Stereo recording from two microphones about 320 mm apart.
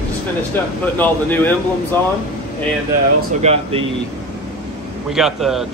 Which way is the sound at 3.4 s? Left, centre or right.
Centre.